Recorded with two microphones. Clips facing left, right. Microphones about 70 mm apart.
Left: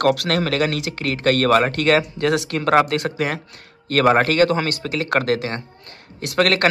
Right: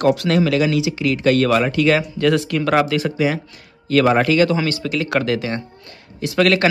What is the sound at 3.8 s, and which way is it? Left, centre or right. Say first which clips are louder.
A man's voice: right 1 dB; left.